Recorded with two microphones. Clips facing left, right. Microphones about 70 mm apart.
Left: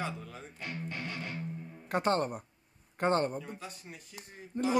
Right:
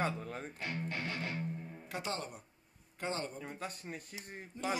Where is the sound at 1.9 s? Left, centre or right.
Left.